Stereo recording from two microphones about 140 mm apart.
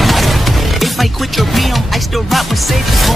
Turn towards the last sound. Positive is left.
turn(degrees=0)  # may be behind; listen again after turning